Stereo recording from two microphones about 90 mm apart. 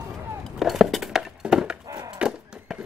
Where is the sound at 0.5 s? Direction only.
Centre (ahead or behind).